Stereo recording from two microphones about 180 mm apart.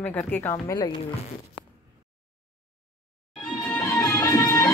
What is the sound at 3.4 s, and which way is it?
Music, 5° left (ahead or behind).